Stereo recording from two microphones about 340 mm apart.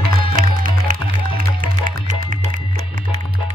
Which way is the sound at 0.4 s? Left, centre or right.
Right.